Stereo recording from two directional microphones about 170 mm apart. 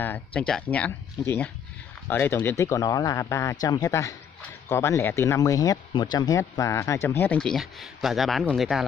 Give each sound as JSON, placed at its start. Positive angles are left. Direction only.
{"t": 0.0, "sound": "speech", "side_deg": 10}